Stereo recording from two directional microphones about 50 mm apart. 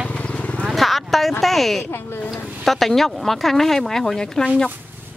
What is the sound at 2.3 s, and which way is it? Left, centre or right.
Speech, centre.